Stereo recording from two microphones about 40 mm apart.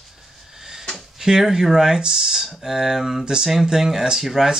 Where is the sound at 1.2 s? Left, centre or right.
Centre.